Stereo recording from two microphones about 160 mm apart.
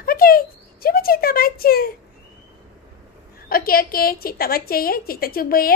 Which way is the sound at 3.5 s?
65° left (ahead or behind).